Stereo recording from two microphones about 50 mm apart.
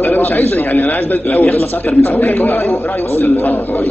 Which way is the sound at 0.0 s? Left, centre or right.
Left.